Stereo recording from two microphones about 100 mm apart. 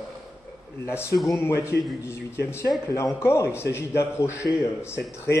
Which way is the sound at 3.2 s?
25° left (ahead or behind).